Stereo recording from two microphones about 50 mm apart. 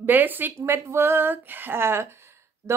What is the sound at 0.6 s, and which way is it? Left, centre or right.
Speech, right.